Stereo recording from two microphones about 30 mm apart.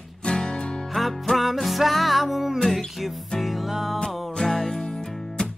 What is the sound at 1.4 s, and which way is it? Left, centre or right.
Music, centre.